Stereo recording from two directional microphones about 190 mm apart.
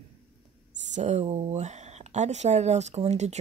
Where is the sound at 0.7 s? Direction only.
40° right (ahead or behind).